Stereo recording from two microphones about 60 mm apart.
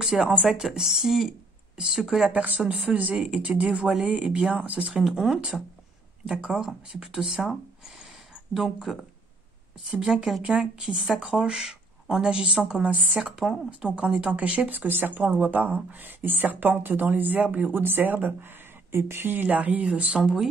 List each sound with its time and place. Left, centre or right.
0.0 s speech: centre
3.3 s speech: right
4.9 s speech: centre
8.5 s speech: centre; by 17.7 s right
17.7 s speech: right
19.3 s speech: right